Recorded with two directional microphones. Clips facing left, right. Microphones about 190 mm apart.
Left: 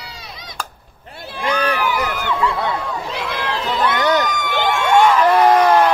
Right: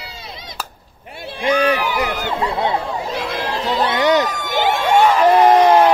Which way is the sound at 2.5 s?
25° right (ahead or behind).